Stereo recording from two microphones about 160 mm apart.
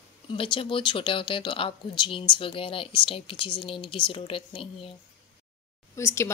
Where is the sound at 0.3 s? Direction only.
35° left (ahead or behind).